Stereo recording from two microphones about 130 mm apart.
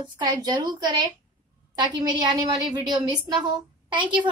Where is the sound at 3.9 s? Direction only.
35° right (ahead or behind).